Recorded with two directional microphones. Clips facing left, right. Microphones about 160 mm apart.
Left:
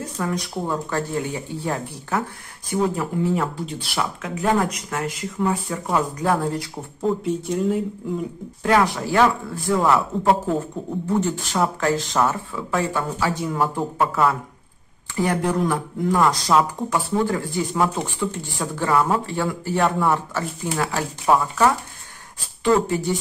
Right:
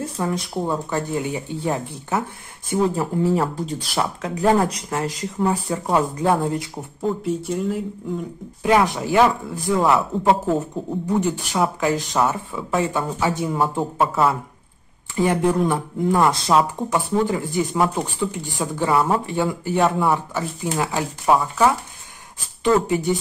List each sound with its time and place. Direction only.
0.2 s speech: 25° right (ahead or behind)
2.7 s speech: 35° right (ahead or behind)
7.0 s speech: centre (ahead or behind)
8.6 s speech: 20° right (ahead or behind)
11.1 s speech: 15° right (ahead or behind)